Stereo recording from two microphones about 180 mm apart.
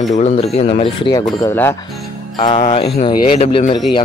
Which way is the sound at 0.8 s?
25° left (ahead or behind).